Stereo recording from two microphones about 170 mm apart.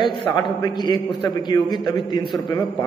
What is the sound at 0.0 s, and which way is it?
A man's voice, 25° left (ahead or behind).